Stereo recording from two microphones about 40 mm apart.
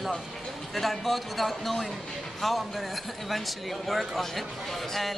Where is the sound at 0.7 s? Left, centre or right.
Centre.